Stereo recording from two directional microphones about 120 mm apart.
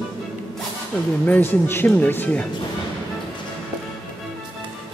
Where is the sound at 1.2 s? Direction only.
15° left (ahead or behind).